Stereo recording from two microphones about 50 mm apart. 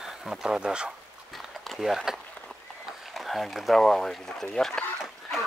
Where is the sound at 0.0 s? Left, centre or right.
Centre.